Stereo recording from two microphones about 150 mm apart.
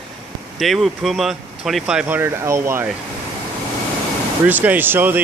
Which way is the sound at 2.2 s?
15° right (ahead or behind).